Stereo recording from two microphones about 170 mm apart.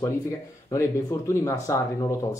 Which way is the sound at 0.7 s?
15° left (ahead or behind).